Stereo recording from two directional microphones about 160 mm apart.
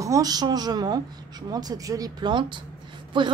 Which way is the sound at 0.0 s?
20° right (ahead or behind).